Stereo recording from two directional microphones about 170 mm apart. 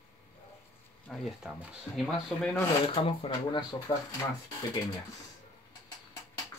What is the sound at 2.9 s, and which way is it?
Speech, 30° left (ahead or behind).